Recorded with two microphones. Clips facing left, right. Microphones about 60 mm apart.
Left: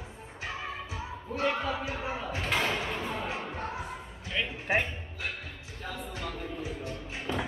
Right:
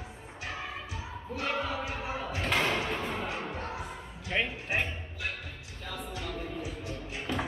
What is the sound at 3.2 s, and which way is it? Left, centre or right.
Music, left.